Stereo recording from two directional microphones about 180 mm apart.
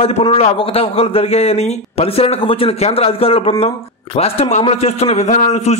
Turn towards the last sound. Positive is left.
turn(degrees=40)  # may be behind; listen again after turning